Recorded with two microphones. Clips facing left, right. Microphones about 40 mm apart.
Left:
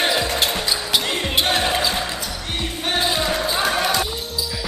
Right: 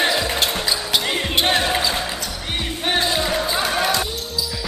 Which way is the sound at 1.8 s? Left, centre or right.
Centre.